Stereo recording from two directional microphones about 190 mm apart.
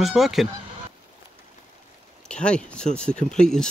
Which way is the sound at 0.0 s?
Centre (ahead or behind).